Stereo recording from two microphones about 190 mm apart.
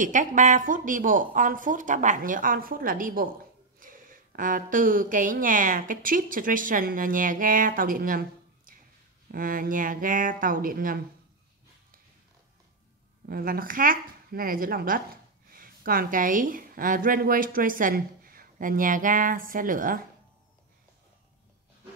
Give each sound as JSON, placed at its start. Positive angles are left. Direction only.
{"t": 0.0, "sound": "a woman's voice", "side_deg": -45}
{"t": 9.3, "sound": "a woman's voice", "side_deg": -45}
{"t": 13.3, "sound": "a woman's voice", "side_deg": -50}